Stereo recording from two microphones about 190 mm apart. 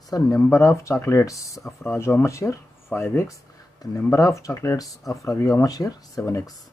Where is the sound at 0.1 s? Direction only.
15° left (ahead or behind).